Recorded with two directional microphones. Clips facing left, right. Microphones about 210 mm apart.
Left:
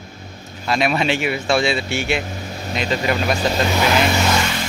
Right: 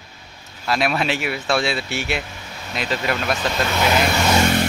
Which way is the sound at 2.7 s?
Centre (ahead or behind).